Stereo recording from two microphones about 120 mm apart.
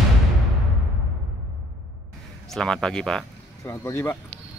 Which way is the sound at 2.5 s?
5° left (ahead or behind).